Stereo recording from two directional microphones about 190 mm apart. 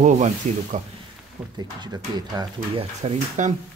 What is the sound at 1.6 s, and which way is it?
Speech, 20° right (ahead or behind).